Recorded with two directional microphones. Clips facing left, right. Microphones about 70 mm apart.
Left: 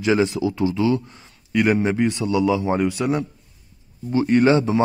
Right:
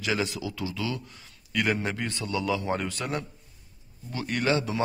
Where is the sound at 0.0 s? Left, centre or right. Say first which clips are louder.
Left 10 dB; left.